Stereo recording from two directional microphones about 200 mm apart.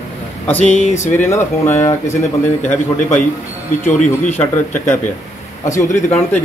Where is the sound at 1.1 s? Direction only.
10° left (ahead or behind).